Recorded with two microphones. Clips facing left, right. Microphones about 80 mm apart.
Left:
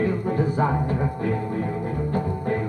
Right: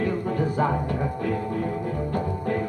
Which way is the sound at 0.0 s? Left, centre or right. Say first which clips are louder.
Left 2 dB; left.